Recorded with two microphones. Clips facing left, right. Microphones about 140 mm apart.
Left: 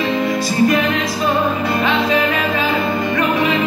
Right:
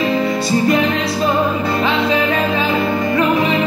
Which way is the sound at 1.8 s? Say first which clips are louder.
Even; 25° right (ahead or behind).